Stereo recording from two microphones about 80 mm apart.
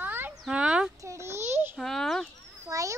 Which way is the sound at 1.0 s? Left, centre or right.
Right.